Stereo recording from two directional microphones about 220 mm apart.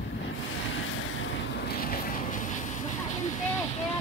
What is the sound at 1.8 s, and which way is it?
Vehicle, 40° left (ahead or behind).